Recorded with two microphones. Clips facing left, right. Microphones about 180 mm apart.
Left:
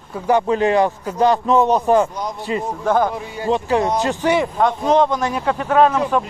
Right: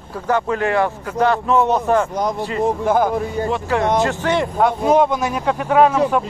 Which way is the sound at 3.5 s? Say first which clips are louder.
Left 2 dB; 15° left (ahead or behind).